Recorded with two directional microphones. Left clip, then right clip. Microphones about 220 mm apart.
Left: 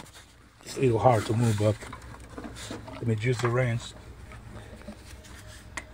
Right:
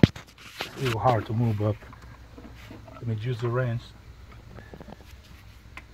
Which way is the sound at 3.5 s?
20° left (ahead or behind).